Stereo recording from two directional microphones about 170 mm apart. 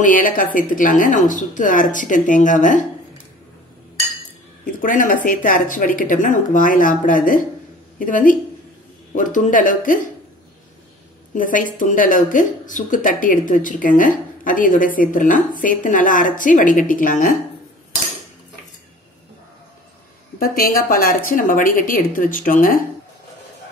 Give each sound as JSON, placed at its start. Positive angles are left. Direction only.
{"t": 0.0, "sound": "speech", "side_deg": 55}
{"t": 4.8, "sound": "speech", "side_deg": 50}
{"t": 11.3, "sound": "speech", "side_deg": 50}
{"t": 20.3, "sound": "a woman's voice", "side_deg": 60}